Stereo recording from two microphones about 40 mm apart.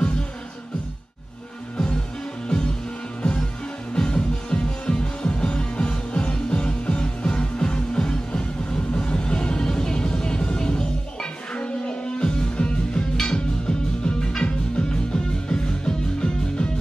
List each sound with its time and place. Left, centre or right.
3.2 s music: left